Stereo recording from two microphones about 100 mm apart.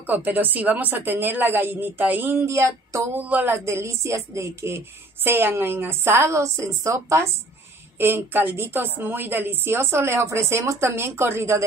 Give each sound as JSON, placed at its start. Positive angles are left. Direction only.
{"t": 0.0, "sound": "speech", "side_deg": -20}
{"t": 3.2, "sound": "speech", "side_deg": -15}